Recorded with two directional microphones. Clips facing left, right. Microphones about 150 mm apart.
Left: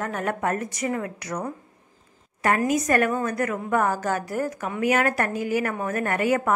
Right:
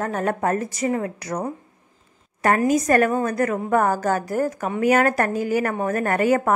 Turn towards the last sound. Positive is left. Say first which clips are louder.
# right 4 dB
turn(degrees=-40)  # may be behind; listen again after turning